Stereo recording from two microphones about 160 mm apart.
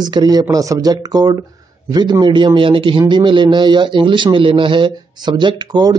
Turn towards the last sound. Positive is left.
turn(degrees=-25)  # may be behind; listen again after turning